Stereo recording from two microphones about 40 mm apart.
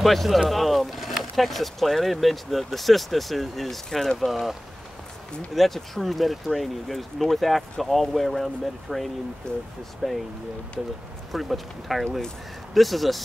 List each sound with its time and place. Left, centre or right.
0.0 s speech: centre
9.5 s speech: left
10.0 s speech: centre
11.3 s speech: centre